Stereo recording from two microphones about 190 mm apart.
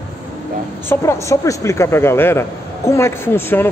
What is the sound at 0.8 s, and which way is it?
Speech, 15° left (ahead or behind).